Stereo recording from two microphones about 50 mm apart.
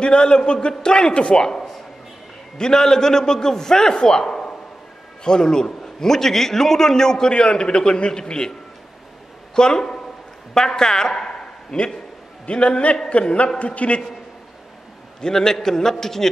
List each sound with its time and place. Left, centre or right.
0.0 s a man's voice: centre
9.6 s a man's voice: centre
15.1 s a man's voice: centre